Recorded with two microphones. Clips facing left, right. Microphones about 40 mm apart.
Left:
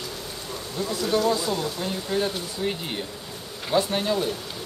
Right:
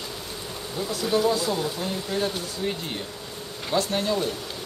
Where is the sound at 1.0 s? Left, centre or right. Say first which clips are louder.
Even; centre.